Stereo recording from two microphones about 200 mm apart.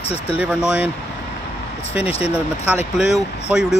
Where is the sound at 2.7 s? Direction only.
5° right (ahead or behind).